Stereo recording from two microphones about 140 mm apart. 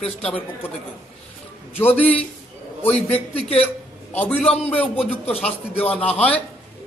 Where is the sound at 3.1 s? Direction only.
45° left (ahead or behind).